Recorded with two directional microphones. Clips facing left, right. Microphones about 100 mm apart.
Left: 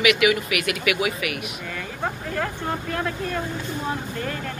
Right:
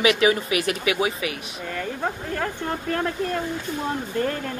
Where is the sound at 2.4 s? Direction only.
35° right (ahead or behind).